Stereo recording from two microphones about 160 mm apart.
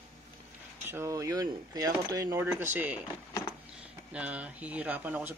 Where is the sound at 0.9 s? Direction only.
20° right (ahead or behind).